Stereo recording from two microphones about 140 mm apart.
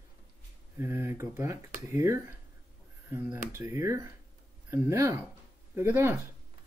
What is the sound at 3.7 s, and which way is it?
Speech, 20° right (ahead or behind).